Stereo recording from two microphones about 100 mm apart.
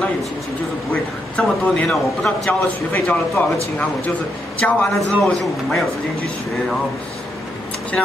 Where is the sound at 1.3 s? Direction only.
5° left (ahead or behind).